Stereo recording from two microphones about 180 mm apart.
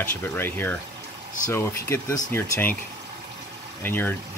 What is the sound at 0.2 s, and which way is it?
Speech, 10° left (ahead or behind).